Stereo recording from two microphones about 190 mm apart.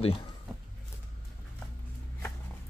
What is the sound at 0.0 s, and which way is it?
Speech, 30° left (ahead or behind).